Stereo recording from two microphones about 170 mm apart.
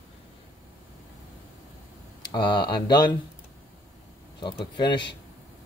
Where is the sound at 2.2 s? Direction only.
25° left (ahead or behind).